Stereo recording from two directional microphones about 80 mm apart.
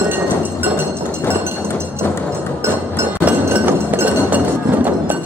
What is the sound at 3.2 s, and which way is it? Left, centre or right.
Chink, right.